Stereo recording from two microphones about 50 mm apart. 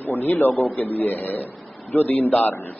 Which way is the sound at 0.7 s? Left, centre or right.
Left.